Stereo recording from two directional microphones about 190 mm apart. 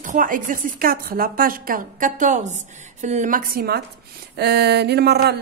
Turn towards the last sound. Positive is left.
turn(degrees=-60)  # may be behind; listen again after turning